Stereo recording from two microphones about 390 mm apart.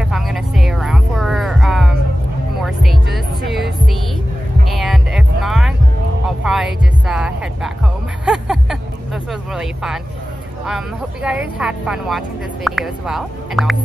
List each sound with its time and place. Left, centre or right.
0.0 s heart sounds: centre
2.6 s music: centre
4.7 s heart sounds: centre
6.2 s music: centre
11.2 s a woman's voice: centre